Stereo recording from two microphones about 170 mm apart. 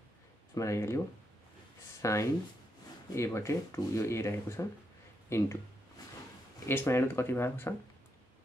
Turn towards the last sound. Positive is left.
turn(degrees=15)  # may be behind; listen again after turning